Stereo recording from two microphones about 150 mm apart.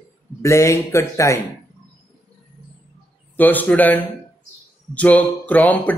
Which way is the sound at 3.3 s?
10° left (ahead or behind).